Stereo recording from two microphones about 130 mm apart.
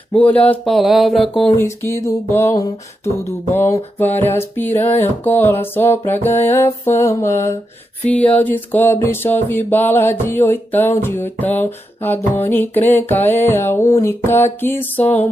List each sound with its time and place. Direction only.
0.1 s mantra: 10° left (ahead or behind)
1.6 s music: 20° left (ahead or behind)